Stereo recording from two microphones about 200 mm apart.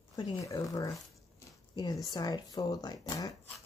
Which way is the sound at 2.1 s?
20° left (ahead or behind).